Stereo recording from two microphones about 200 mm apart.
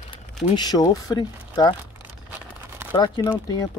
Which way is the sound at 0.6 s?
20° left (ahead or behind).